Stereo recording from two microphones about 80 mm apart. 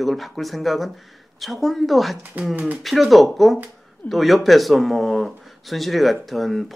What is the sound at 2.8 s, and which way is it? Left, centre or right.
Speech, centre.